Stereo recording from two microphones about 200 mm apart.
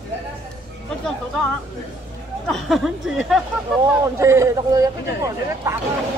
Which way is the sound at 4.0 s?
15° right (ahead or behind).